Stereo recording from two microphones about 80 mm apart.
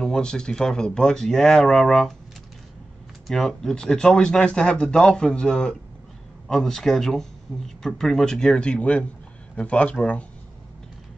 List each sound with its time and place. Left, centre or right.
0.0 s speech: centre
3.3 s speech: centre